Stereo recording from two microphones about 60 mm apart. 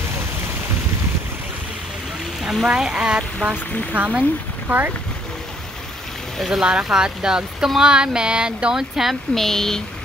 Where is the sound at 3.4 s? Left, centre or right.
Right.